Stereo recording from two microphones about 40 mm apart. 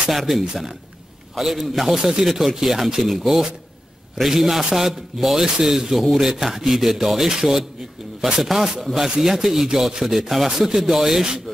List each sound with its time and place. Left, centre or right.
0.3 s a man's voice: centre
2.2 s a man's voice: centre